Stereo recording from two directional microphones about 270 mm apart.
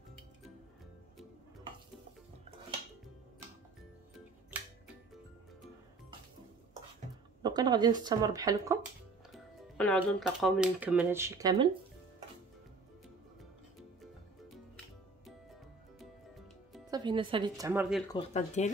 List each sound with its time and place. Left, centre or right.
7.4 s speech: centre
9.3 s speech: centre
16.9 s speech: centre
18.1 s speech: left